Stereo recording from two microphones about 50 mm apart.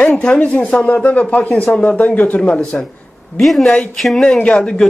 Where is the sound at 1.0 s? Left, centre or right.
Left.